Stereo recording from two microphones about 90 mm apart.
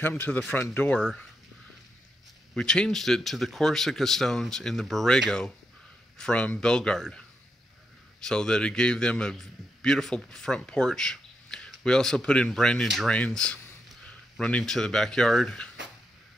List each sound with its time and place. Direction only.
0.0 s speech: 20° left (ahead or behind)
2.5 s a man's voice: 10° left (ahead or behind)
13.1 s a man's voice: 10° left (ahead or behind)